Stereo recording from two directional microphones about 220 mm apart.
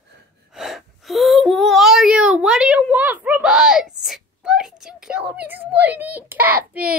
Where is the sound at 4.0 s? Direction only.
Centre (ahead or behind).